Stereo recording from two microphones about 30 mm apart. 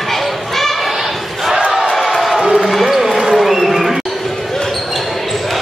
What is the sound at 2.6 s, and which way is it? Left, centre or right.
Basketball bounce, centre.